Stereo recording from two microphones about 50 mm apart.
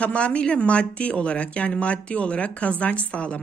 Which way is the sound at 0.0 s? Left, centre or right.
Left.